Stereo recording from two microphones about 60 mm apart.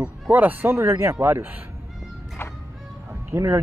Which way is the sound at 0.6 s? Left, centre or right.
Right.